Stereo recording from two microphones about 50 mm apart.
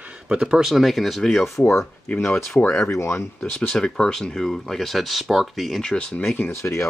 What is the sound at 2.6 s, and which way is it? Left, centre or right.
Speech, left.